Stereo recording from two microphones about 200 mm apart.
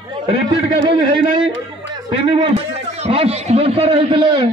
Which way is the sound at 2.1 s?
25° right (ahead or behind).